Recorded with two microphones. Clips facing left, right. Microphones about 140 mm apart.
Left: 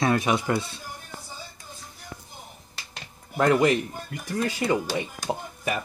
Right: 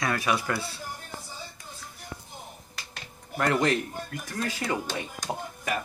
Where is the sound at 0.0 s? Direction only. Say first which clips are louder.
Left 4 dB; 25° left (ahead or behind).